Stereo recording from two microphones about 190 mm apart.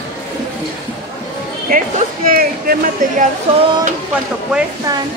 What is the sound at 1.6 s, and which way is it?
Speech, 45° right (ahead or behind).